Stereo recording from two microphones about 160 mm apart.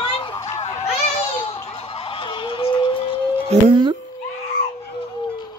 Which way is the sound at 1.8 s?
35° left (ahead or behind).